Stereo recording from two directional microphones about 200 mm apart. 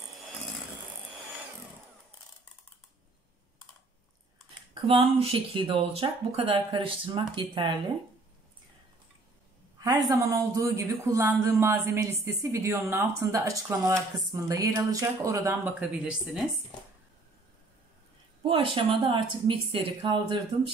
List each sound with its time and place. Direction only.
4.8 s speech: 30° right (ahead or behind)
10.0 s speech: 15° right (ahead or behind)
15.8 s speech: 5° right (ahead or behind)
18.4 s speech: 25° right (ahead or behind)